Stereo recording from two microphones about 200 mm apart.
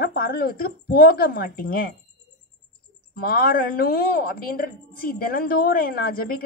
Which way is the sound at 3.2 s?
50° left (ahead or behind).